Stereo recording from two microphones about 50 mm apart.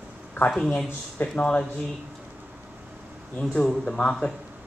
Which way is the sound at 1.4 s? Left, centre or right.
Left.